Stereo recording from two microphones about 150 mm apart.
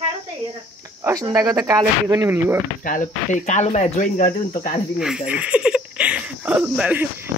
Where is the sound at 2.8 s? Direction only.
60° left (ahead or behind).